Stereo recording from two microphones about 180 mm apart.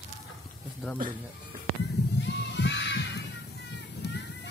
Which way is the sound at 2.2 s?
75° left (ahead or behind).